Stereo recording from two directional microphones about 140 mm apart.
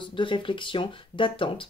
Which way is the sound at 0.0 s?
35° left (ahead or behind).